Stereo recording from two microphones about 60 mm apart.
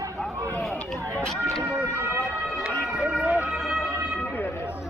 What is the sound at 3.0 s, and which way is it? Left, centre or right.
Emergency vehicle, centre.